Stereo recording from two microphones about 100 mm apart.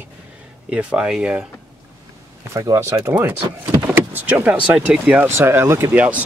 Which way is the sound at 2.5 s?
30° right (ahead or behind).